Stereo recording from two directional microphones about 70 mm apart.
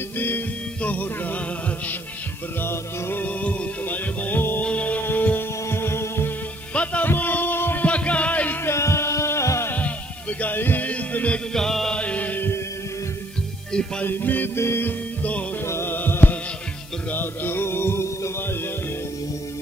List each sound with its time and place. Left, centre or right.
2.6 s music: left
3.4 s music: left
6.7 s music: centre
8.6 s a sound: left
9.7 s music: left
11.5 s music: centre
12.0 s music: left
14.0 s music: left
15.6 s music: left